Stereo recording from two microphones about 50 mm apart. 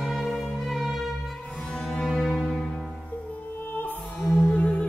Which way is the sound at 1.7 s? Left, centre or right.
Centre.